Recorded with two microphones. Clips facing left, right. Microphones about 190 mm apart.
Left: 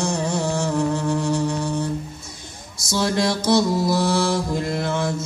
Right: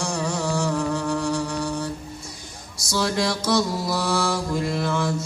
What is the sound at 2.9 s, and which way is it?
Mantra, 25° left (ahead or behind).